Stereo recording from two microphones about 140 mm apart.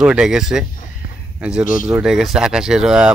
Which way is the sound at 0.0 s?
5° right (ahead or behind).